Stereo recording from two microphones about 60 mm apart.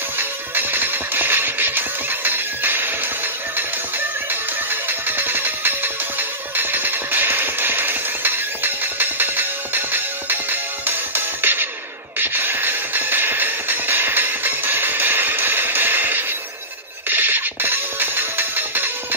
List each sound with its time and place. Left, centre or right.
0.2 s music: right
4.3 s music: right